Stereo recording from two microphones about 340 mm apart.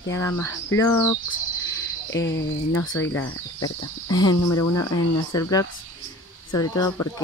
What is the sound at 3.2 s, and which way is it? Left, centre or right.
Speech, left.